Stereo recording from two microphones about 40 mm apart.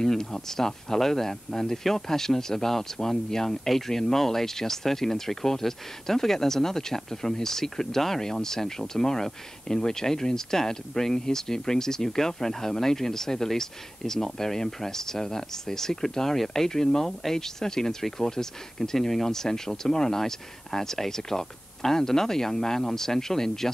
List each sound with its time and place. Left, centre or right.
0.0 s speech: centre